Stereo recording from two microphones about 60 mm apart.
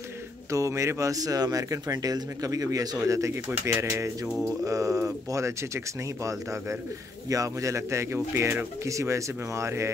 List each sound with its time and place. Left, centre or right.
0.5 s speech: right
4.6 s speech: right
7.2 s speech: right
8.8 s speech: right